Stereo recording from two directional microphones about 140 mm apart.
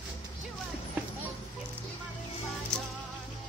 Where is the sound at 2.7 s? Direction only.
5° left (ahead or behind).